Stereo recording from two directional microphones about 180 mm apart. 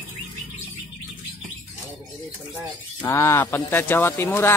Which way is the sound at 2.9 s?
15° left (ahead or behind).